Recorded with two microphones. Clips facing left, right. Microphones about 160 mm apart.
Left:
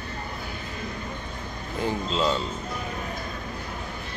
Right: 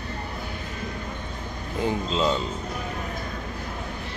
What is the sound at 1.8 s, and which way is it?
Speech, 20° right (ahead or behind).